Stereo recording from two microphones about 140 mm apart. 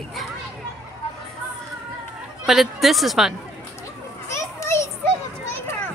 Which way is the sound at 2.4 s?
Centre (ahead or behind).